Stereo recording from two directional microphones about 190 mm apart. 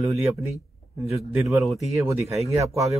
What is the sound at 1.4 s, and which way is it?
Speech, centre (ahead or behind).